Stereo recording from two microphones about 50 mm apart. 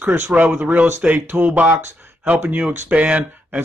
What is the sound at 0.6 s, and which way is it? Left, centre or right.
A man's voice, right.